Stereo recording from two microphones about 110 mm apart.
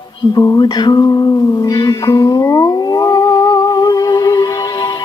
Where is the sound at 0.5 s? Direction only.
40° left (ahead or behind).